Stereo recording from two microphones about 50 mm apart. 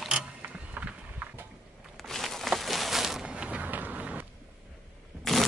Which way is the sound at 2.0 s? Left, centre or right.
Centre.